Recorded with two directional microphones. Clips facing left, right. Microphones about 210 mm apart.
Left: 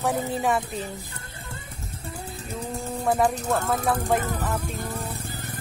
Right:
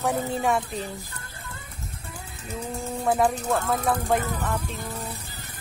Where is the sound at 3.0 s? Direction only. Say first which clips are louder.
Even; centre (ahead or behind).